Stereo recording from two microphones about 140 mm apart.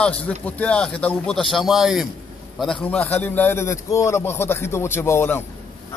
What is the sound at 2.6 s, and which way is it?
A man's voice, 5° left (ahead or behind).